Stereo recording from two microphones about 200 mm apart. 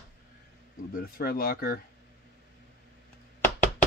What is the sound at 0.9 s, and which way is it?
Speech, 50° left (ahead or behind).